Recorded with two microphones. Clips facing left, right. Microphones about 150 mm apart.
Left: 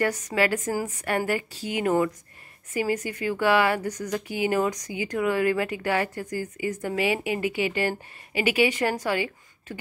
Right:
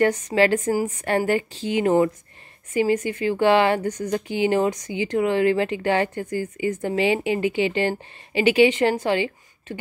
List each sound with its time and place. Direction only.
0.0 s a woman's voice: 30° right (ahead or behind)